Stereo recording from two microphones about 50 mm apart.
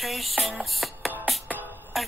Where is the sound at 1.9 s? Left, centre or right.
Centre.